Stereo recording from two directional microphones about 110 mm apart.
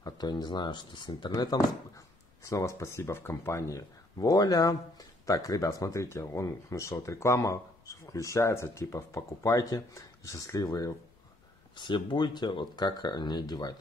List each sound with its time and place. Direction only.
0.0 s speech: 40° left (ahead or behind)
11.7 s speech: 45° left (ahead or behind)